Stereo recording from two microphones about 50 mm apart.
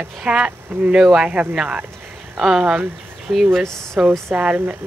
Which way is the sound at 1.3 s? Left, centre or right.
Right.